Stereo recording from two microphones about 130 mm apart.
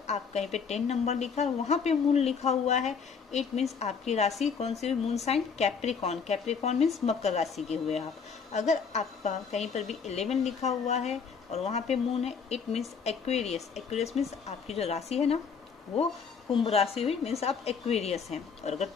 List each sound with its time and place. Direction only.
0.0 s a woman's voice: 60° left (ahead or behind)
16.5 s a woman's voice: 50° left (ahead or behind)